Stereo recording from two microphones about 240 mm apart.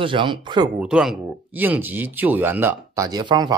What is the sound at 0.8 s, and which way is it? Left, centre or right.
Speech, centre.